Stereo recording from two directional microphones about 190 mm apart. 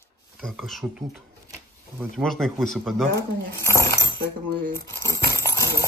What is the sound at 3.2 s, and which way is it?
Speech, 15° left (ahead or behind).